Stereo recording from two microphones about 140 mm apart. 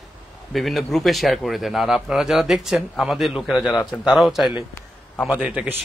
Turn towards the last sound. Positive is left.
turn(degrees=-10)  # may be behind; listen again after turning